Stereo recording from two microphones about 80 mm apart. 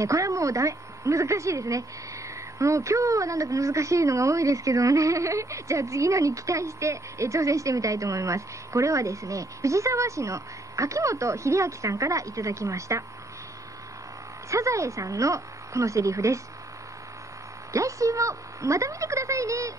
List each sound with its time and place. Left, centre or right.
0.0 s a woman's voice: right
14.5 s a woman's voice: right
17.7 s a woman's voice: right